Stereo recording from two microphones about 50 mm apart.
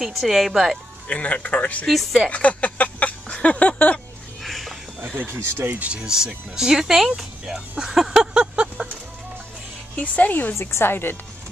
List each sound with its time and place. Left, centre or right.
0.0 s speech: centre
1.0 s speech: left
1.9 s speech: centre
2.3 s a sound: left
4.4 s a sound: centre
5.3 s speech: right
5.8 s speech: right
6.0 s speech: centre
9.9 s speech: left
10.6 s speech: left